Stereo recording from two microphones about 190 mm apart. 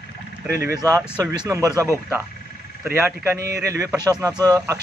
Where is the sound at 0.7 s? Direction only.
15° right (ahead or behind).